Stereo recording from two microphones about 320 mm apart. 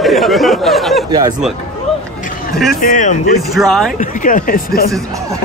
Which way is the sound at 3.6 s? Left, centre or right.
Centre.